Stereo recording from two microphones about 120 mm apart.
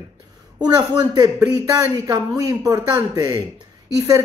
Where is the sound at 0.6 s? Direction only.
35° right (ahead or behind).